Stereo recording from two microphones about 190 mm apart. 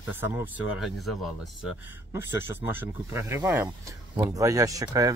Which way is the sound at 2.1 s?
10° right (ahead or behind).